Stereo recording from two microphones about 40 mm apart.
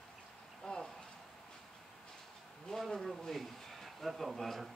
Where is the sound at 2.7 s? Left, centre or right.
Centre.